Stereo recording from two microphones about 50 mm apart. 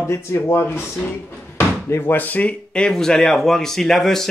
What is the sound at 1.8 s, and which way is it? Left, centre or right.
Speech, left.